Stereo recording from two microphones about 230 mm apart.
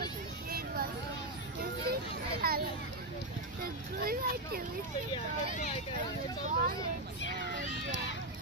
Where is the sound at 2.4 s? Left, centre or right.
Right.